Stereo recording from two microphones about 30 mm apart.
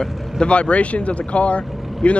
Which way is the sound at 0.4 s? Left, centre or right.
Left.